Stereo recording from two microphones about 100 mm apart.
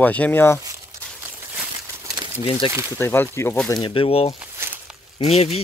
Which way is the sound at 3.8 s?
70° left (ahead or behind).